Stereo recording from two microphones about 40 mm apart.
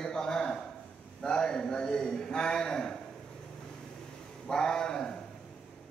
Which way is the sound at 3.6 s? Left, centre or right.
Centre.